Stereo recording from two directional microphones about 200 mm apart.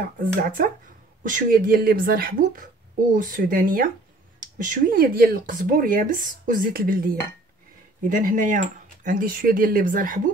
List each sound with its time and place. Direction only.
0.2 s speech: 40° right (ahead or behind)
8.1 s speech: 40° right (ahead or behind)